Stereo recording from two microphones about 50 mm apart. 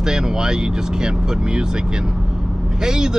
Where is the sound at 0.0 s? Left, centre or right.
Centre.